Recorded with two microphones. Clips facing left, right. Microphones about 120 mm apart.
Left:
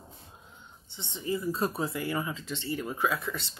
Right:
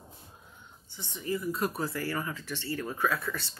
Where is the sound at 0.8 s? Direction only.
25° left (ahead or behind).